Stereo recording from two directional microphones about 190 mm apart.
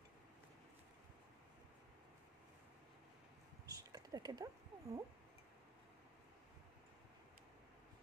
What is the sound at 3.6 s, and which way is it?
Speech, 20° right (ahead or behind).